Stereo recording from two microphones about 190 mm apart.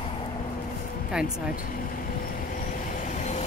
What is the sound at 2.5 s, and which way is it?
Vehicle, 45° left (ahead or behind).